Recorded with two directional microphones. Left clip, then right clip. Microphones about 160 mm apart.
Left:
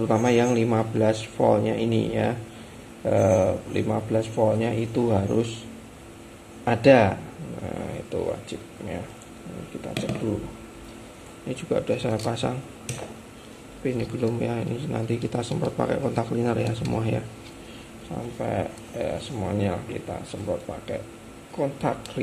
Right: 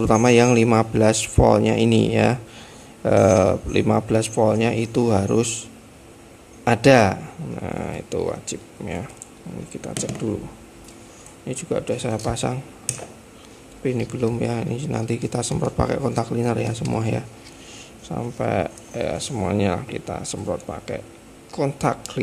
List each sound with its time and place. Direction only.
0.1 s speech: 35° right (ahead or behind)
6.6 s speech: 30° right (ahead or behind)
11.4 s speech: 20° right (ahead or behind)
13.8 s speech: 30° right (ahead or behind)
18.1 s speech: 40° right (ahead or behind)